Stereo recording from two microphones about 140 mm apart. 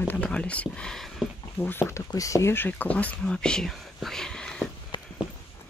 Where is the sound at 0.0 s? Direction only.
10° left (ahead or behind).